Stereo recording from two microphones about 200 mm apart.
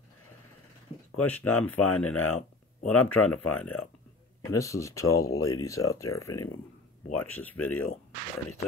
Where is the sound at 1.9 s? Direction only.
90° left.